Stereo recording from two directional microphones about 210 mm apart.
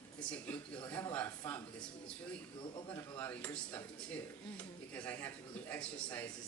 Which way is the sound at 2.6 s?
20° left (ahead or behind).